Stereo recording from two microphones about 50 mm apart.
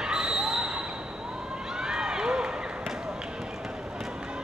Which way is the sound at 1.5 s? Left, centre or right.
Centre.